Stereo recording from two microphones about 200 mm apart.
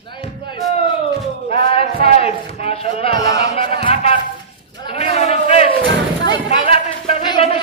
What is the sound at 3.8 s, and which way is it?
Music, 30° left (ahead or behind).